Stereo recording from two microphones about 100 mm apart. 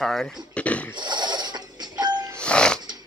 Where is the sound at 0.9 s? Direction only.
50° right (ahead or behind).